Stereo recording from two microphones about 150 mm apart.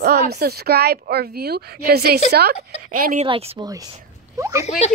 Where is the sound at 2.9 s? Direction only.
75° right (ahead or behind).